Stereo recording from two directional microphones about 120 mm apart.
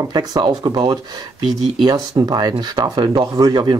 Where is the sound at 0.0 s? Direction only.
35° right (ahead or behind).